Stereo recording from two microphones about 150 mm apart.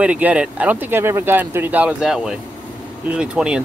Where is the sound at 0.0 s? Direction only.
10° right (ahead or behind).